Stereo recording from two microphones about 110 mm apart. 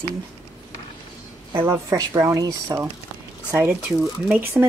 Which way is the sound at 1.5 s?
25° right (ahead or behind).